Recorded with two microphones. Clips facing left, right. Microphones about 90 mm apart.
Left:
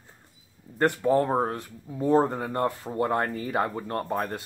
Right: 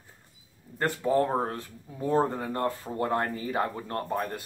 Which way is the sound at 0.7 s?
20° left (ahead or behind).